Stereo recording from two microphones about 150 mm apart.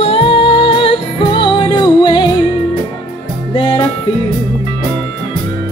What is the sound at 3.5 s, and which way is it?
Music, 30° left (ahead or behind).